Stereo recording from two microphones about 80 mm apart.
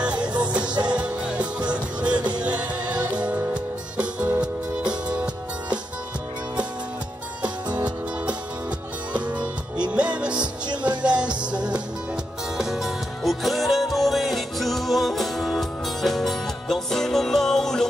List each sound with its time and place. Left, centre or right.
0.0 s music: centre
0.7 s music: right
0.9 s music: centre
7.4 s music: right
8.3 s music: centre